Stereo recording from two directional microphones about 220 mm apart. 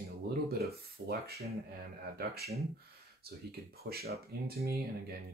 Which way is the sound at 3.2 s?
45° right (ahead or behind).